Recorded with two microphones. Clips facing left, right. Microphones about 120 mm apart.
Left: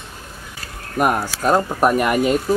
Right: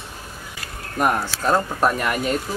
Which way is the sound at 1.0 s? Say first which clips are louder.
Left 3 dB; 10° left (ahead or behind).